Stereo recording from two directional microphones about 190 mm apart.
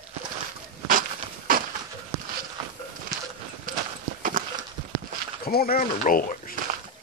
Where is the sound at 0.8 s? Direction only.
45° right (ahead or behind).